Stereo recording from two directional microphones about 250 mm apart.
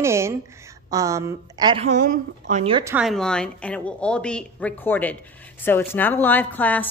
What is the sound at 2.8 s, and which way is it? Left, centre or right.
A woman's voice, centre.